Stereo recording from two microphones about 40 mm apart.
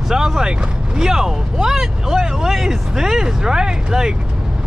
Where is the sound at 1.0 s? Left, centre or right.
Centre.